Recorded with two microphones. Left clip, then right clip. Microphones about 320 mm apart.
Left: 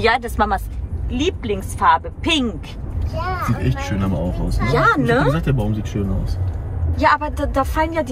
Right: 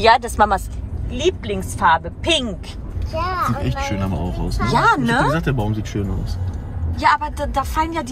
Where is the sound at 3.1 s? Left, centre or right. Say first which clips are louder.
Right 3 dB; right.